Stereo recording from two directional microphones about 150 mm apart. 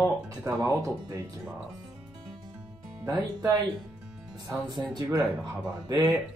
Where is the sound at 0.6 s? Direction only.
25° right (ahead or behind).